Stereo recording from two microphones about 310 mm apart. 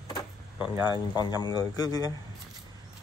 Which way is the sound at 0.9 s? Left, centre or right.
Centre.